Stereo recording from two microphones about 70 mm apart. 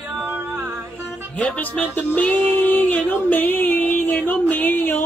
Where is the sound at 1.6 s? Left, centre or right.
Left.